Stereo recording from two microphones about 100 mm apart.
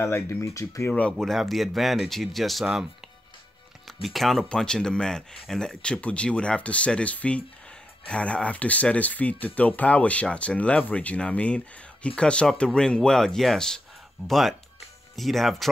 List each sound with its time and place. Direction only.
0.0 s speech: 25° left (ahead or behind)
1.1 s speech: centre (ahead or behind)